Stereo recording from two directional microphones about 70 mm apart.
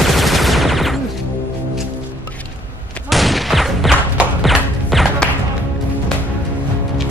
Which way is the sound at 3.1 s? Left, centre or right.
Centre.